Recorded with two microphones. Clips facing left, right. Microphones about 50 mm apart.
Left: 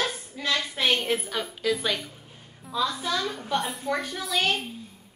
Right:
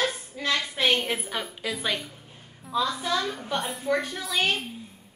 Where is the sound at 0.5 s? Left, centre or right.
Centre.